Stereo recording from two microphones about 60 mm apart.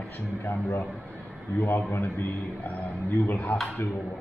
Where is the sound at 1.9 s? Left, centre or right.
Left.